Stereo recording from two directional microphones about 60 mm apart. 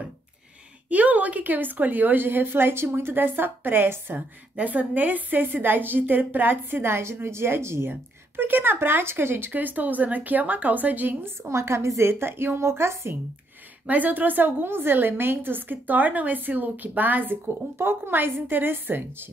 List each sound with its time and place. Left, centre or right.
0.8 s a woman's voice: right
4.6 s a woman's voice: right
11.2 s a woman's voice: right
13.8 s a woman's voice: right